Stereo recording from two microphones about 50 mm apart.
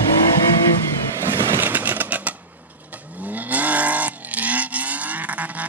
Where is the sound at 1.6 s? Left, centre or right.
Right.